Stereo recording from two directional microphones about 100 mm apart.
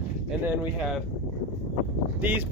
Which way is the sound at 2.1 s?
15° right (ahead or behind).